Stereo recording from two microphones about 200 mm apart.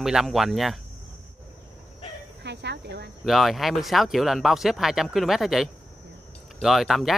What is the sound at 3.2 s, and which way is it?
Speech, centre (ahead or behind).